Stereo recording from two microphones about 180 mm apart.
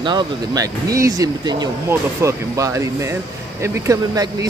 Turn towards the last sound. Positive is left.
turn(degrees=-20)  # may be behind; listen again after turning